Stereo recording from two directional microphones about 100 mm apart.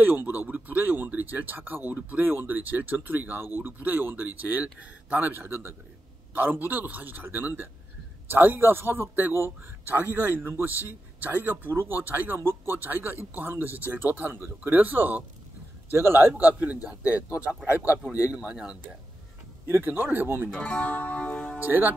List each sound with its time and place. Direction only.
0.0 s speech: 20° right (ahead or behind)
19.7 s speech: 20° right (ahead or behind)
20.5 s speech: 15° left (ahead or behind)
21.6 s speech: 20° right (ahead or behind)